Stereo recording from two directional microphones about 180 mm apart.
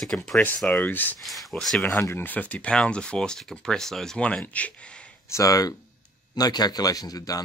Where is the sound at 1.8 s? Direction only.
15° left (ahead or behind).